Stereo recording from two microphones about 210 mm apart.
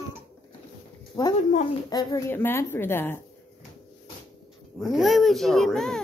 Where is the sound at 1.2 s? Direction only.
15° left (ahead or behind).